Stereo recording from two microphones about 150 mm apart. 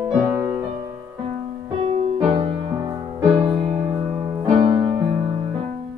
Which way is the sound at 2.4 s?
30° right (ahead or behind).